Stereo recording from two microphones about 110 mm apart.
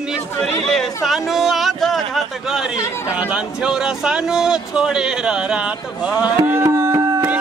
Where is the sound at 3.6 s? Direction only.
5° right (ahead or behind).